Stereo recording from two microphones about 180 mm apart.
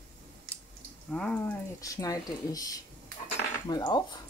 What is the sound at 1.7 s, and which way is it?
Speech, 20° left (ahead or behind).